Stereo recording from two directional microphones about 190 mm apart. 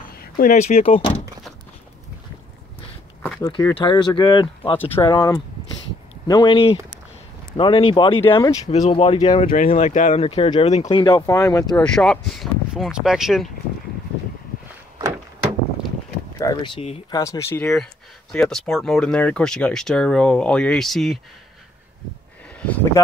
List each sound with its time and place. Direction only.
0.2 s speech: 40° left (ahead or behind)
3.3 s speech: 20° left (ahead or behind)
8.6 s speech: 35° left (ahead or behind)
9.7 s speech: 40° left (ahead or behind)
10.9 s speech: 20° left (ahead or behind)
11.7 s speech: 5° left (ahead or behind)
16.3 s speech: 20° left (ahead or behind)
17.1 s speech: 15° left (ahead or behind); by 21.2 s centre (ahead or behind)